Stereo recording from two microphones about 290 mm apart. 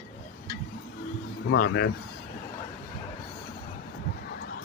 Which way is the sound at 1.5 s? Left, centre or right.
Left.